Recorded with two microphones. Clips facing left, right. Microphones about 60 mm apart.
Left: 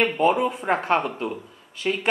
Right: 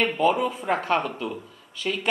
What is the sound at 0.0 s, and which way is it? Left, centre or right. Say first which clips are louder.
Speech: left 2 dB; left.